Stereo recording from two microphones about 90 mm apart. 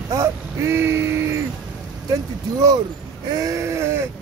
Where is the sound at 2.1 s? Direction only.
45° right (ahead or behind).